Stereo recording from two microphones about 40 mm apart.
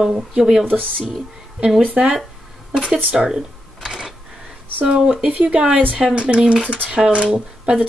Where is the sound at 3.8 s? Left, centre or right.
Centre.